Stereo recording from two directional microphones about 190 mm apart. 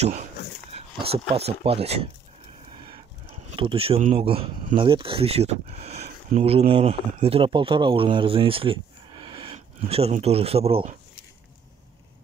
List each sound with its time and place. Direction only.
0.0 s speech: 40° right (ahead or behind)
3.4 s speech: 30° right (ahead or behind)